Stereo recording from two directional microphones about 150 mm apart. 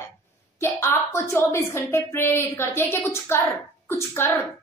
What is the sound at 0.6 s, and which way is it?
A woman's voice, 15° left (ahead or behind).